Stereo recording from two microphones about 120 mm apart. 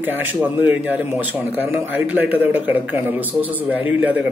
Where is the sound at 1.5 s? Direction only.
15° right (ahead or behind).